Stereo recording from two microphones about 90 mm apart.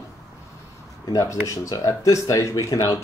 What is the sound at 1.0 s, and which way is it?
Speech, 35° left (ahead or behind).